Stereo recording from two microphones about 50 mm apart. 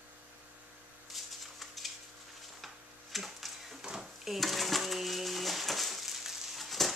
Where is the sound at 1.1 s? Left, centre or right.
Centre.